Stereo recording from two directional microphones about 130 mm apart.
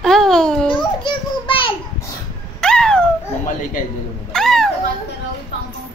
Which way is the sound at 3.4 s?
80° left.